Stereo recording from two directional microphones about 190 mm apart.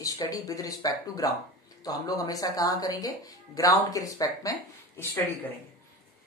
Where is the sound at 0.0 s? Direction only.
20° left (ahead or behind).